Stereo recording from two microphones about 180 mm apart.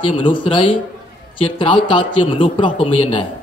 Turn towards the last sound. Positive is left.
turn(degrees=30)  # may be behind; listen again after turning